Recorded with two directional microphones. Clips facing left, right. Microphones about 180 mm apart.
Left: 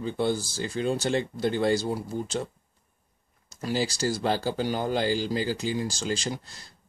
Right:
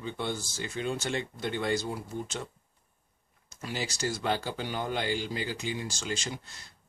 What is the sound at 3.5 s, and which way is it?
Speech, 35° left (ahead or behind).